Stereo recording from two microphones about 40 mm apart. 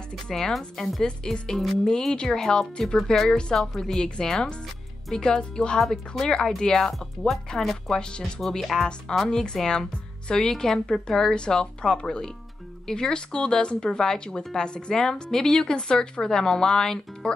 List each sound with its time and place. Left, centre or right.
0.3 s speech: centre
1.0 s speech: centre
3.5 s speech: centre
4.0 s speech: centre
5.8 s speech: centre
10.5 s speech: centre
10.9 s speech: centre